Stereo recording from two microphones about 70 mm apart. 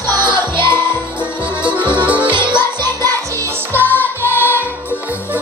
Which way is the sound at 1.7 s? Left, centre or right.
Right.